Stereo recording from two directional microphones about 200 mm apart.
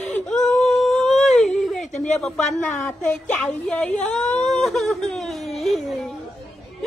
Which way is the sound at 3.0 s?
5° left (ahead or behind).